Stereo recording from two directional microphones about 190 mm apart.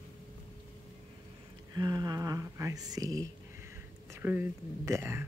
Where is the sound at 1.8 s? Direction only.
20° right (ahead or behind).